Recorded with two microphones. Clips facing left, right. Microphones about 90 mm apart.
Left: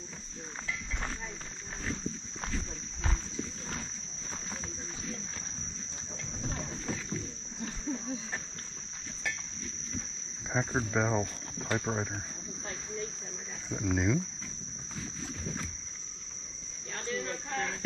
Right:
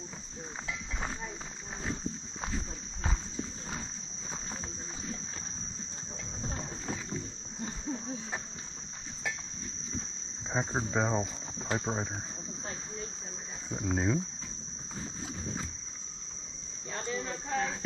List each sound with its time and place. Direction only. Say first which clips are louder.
2.4 s a sound: right 1 dB; 10° right (ahead or behind)
6.4 s boat: left 1 dB; 10° right (ahead or behind)
10.5 s cricket: left 1 dB; 15° right (ahead or behind)
13.7 s speech: left 1 dB; 10° right (ahead or behind)
13.9 s speech: even; 25° right (ahead or behind)
16.9 s a sound: even; 10° right (ahead or behind)